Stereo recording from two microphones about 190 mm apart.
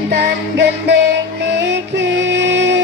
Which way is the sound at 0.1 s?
65° right (ahead or behind).